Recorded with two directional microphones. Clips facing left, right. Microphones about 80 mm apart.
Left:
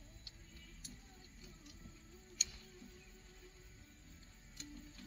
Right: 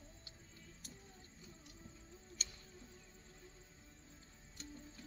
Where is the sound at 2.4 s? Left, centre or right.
Right.